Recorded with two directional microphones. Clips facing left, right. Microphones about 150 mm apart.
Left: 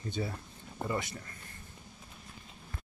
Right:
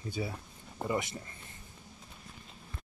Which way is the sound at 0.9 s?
25° right (ahead or behind).